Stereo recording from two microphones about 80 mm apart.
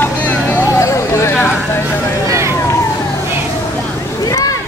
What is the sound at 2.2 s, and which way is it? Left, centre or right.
Vehicle, right.